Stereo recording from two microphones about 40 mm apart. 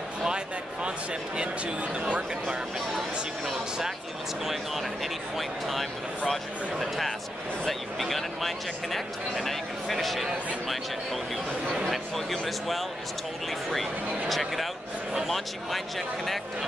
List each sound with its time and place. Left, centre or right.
0.8 s speech: right
6.2 s speech: centre
11.7 s speech: centre
12.3 s speech: centre
14.3 s speech: centre